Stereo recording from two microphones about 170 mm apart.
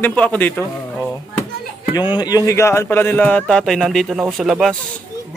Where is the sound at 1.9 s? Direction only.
25° left (ahead or behind).